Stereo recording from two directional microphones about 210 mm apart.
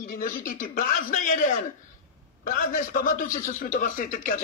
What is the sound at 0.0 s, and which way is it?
A man's voice, 40° left (ahead or behind).